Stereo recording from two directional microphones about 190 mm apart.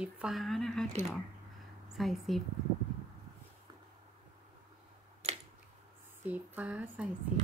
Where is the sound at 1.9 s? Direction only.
Centre (ahead or behind).